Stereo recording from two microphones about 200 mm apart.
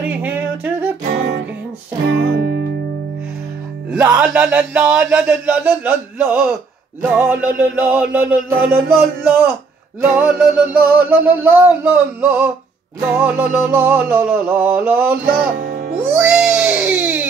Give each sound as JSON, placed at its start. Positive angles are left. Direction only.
{"t": 0.0, "sound": "singing", "side_deg": -10}
{"t": 2.0, "sound": "music", "side_deg": -60}
{"t": 3.9, "sound": "speech", "side_deg": -5}
{"t": 15.6, "sound": "music", "side_deg": -50}
{"t": 16.0, "sound": "baby cry", "side_deg": -5}